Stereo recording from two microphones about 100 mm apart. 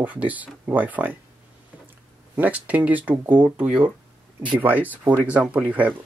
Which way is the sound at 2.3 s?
15° right (ahead or behind).